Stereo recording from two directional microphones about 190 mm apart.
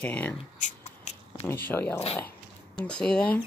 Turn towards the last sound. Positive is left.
turn(degrees=5)  # may be behind; listen again after turning